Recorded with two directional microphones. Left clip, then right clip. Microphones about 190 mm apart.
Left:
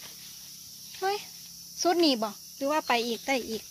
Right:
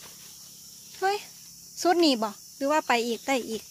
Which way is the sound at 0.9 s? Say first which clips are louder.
Right 3 dB; 25° right (ahead or behind).